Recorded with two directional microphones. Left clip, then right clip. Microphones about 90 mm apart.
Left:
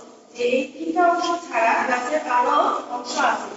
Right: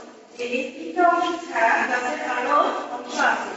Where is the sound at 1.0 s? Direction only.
30° left (ahead or behind).